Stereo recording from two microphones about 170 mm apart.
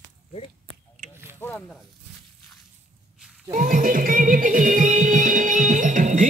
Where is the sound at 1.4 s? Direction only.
10° left (ahead or behind).